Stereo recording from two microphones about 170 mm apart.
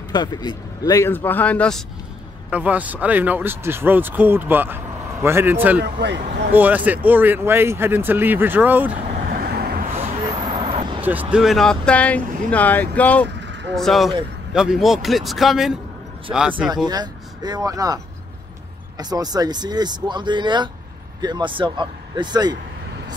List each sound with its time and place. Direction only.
0.1 s speech: 25° left (ahead or behind); by 1.8 s 5° left (ahead or behind)
2.5 s speech: 10° right (ahead or behind)
5.8 s speech: 90° right
6.5 s speech: 10° right (ahead or behind)
9.3 s vehicle: 65° right (ahead or behind)
10.4 s vehicle: 35° right (ahead or behind)
11.0 s a man's voice: 10° right (ahead or behind)
16.7 s speech: 25° right (ahead or behind)